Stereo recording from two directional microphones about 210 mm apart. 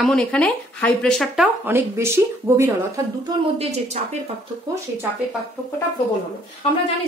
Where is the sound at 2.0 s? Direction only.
10° right (ahead or behind).